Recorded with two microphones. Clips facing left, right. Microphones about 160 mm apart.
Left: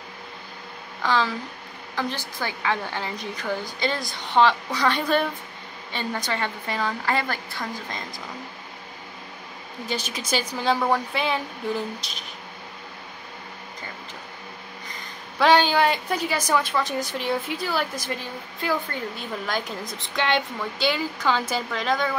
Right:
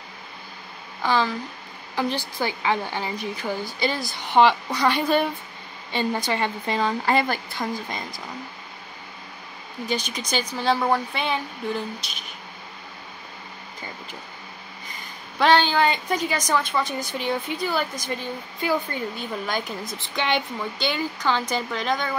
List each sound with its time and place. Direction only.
1.0 s a woman's voice: 5° right (ahead or behind)
9.8 s a woman's voice: 5° left (ahead or behind)
15.3 s a woman's voice: 5° left (ahead or behind)